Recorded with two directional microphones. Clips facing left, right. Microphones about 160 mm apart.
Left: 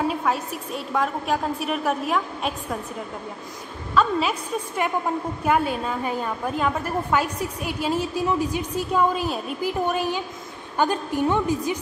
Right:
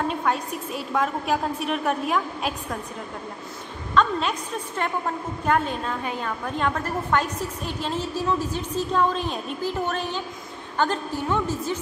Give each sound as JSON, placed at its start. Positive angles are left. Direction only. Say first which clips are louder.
{"t": 0.0, "sound": "a woman's voice", "louder": "left 1 dB", "side_deg": 5}
{"t": 3.9, "sound": "a woman's voice", "louder": "left 1 dB", "side_deg": 5}